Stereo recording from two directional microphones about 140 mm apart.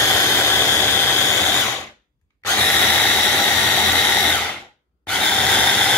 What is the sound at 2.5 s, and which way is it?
Drill, 15° left (ahead or behind).